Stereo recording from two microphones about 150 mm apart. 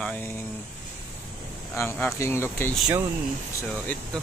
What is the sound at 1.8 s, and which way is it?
Speech, 20° left (ahead or behind).